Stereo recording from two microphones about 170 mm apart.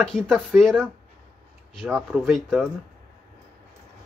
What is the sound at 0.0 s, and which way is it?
Speech, 5° left (ahead or behind).